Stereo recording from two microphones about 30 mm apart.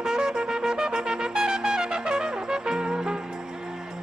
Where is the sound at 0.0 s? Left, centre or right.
Right.